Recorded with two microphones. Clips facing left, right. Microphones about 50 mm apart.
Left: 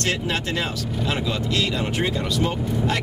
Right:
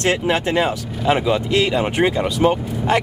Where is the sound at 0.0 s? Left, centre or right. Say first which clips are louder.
Right 6 dB; centre.